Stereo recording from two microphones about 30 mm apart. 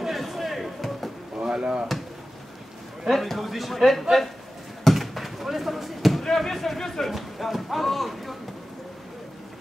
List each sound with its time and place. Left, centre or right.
0.1 s music: centre
1.4 s chop: right
3.1 s speech: centre
4.8 s basketball bounce: centre
6.2 s speech: centre
7.1 s speech: centre